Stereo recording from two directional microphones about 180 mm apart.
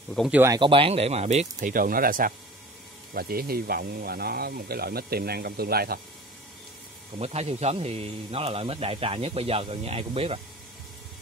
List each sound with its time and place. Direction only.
0.1 s speech: centre (ahead or behind)
0.6 s a man's voice: 30° right (ahead or behind); by 5.9 s 60° right (ahead or behind)
7.2 s a man's voice: 35° right (ahead or behind)